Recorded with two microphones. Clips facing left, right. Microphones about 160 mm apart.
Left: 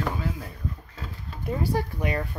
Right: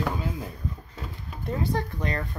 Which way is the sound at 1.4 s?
10° left (ahead or behind).